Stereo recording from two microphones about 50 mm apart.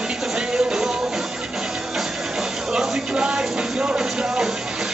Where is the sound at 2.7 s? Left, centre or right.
Centre.